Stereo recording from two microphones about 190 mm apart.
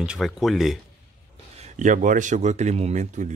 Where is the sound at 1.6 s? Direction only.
40° right (ahead or behind).